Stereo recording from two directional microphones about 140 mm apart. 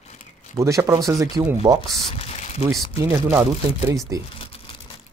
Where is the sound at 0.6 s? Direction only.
20° right (ahead or behind).